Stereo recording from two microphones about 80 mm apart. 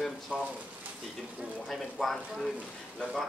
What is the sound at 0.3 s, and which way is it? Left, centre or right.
Speech, centre.